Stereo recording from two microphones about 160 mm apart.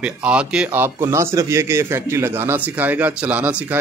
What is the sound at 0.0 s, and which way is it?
Speech, 5° right (ahead or behind).